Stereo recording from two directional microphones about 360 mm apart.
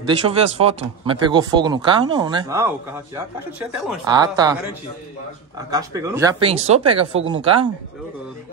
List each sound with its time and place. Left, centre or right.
0.1 s speech: centre
5.7 s speech: centre